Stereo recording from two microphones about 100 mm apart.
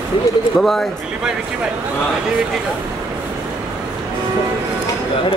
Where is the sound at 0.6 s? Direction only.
5° left (ahead or behind).